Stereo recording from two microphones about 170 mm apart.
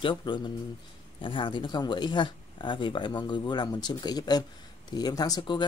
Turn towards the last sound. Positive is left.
turn(degrees=25)  # may be behind; listen again after turning